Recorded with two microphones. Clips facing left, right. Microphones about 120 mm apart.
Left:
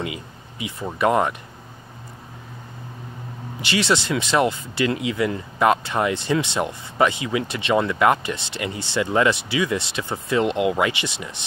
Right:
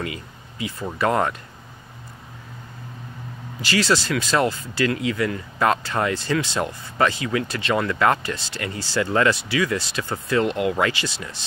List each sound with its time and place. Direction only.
0.0 s a sound: 20° left (ahead or behind)
0.8 s speech: 20° left (ahead or behind)
3.6 s speech: 20° left (ahead or behind)